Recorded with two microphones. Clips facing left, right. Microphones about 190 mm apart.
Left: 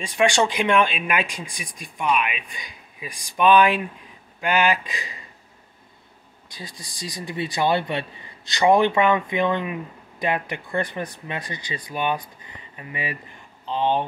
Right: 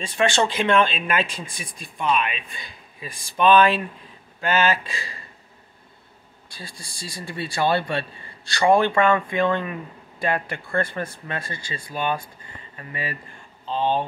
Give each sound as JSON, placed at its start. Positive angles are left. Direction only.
{"t": 0.0, "sound": "speech", "side_deg": 15}
{"t": 6.5, "sound": "speech", "side_deg": 20}